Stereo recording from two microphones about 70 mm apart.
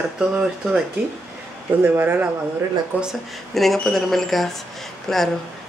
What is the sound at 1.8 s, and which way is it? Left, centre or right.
Speech, right.